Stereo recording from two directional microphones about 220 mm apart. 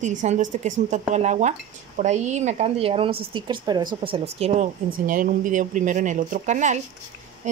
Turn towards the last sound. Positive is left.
turn(degrees=-35)  # may be behind; listen again after turning